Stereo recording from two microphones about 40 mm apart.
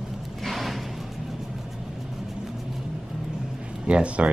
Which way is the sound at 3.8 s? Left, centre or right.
Right.